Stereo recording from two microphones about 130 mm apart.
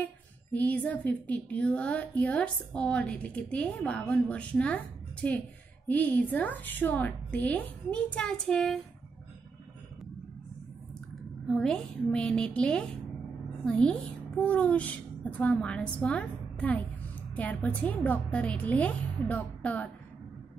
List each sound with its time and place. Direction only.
0.5 s a woman's voice: 10° left (ahead or behind)
11.4 s a woman's voice: 5° left (ahead or behind)